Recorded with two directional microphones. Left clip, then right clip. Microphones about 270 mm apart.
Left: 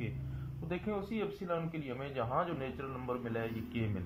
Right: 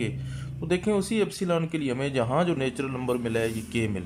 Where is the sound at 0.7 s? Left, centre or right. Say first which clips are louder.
Right 13 dB; centre.